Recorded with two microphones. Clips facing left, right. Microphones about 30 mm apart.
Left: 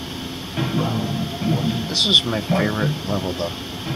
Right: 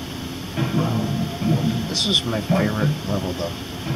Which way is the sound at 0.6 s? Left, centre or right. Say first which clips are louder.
Even; centre.